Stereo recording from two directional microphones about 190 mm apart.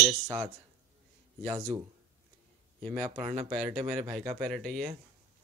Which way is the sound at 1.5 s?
15° right (ahead or behind).